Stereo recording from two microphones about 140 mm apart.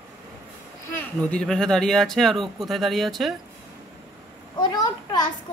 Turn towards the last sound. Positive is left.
turn(degrees=30)  # may be behind; listen again after turning